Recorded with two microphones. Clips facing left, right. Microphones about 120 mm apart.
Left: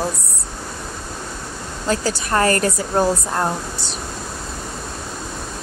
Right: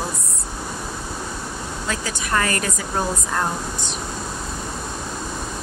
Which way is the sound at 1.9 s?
35° left (ahead or behind).